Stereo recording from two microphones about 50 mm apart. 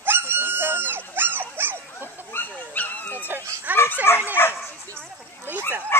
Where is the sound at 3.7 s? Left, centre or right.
Left.